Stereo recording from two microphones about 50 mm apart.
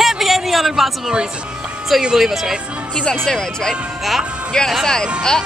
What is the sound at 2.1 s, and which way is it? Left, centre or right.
Speech, centre.